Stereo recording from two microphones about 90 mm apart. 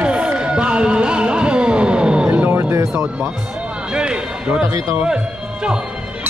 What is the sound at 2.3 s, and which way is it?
Music, 25° right (ahead or behind).